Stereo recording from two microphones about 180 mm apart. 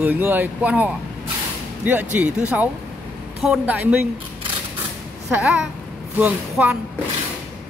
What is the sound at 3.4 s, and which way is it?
Speech, 5° right (ahead or behind).